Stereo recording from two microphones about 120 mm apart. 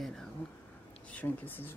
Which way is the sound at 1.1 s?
15° left (ahead or behind).